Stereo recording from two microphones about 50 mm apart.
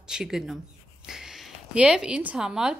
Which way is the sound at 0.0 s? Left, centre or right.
Centre.